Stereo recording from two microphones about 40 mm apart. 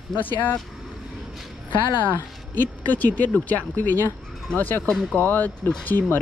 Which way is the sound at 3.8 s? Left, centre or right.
Left.